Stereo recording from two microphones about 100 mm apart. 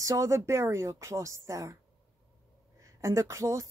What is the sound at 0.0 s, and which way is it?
Speech, 30° right (ahead or behind).